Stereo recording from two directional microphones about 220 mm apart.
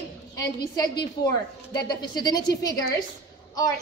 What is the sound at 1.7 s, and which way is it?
Speech, 20° left (ahead or behind).